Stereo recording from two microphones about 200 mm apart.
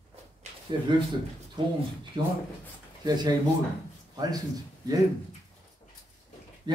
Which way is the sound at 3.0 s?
20° right (ahead or behind).